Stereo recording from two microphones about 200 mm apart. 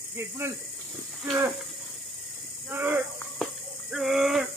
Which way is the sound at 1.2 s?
5° right (ahead or behind).